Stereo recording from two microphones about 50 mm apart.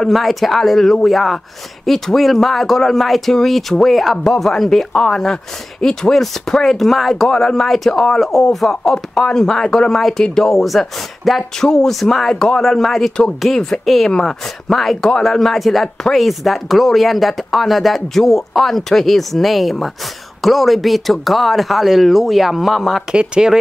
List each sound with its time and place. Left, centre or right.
0.0 s speech: centre
10.4 s speech: centre
23.1 s speech: centre